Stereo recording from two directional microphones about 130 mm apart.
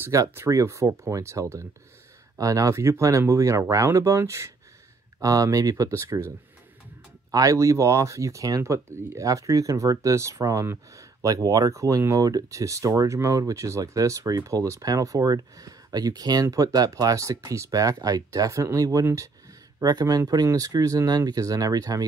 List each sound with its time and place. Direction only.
0.0 s speech: 20° right (ahead or behind)